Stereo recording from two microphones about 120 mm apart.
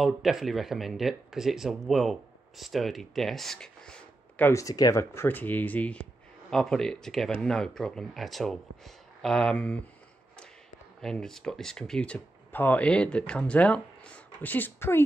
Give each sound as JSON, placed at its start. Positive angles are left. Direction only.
{"t": 0.0, "sound": "speech", "side_deg": 0}
{"t": 4.5, "sound": "speech", "side_deg": 30}
{"t": 11.0, "sound": "speech", "side_deg": 5}